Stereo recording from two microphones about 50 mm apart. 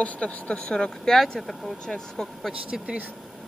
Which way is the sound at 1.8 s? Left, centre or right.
Centre.